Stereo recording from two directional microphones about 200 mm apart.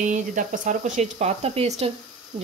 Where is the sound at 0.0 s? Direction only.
40° right (ahead or behind).